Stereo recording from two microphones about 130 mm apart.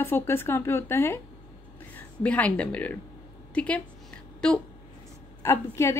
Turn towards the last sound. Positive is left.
turn(degrees=20)  # may be behind; listen again after turning